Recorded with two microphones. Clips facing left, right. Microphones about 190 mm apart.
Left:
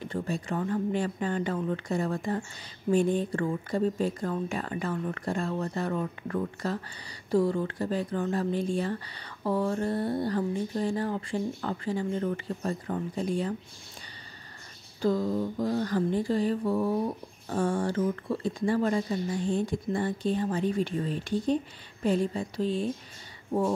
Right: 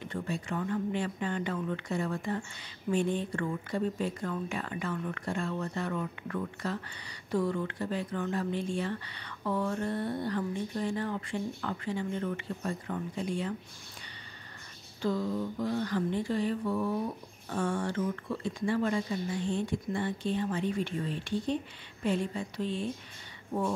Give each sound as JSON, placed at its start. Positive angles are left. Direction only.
{"t": 0.0, "sound": "speech", "side_deg": 35}
{"t": 15.0, "sound": "speech", "side_deg": 40}